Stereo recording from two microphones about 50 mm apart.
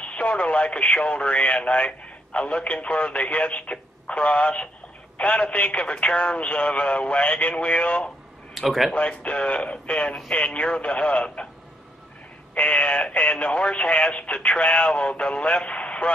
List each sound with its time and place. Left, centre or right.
0.0 s speech: left
8.5 s speech: centre
8.9 s speech: left
12.5 s speech: left